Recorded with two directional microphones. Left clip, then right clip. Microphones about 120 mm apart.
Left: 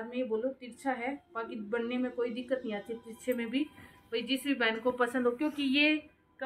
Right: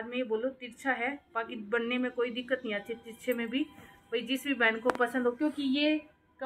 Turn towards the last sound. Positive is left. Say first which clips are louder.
# right 1 dB
turn(degrees=-10)  # may be behind; listen again after turning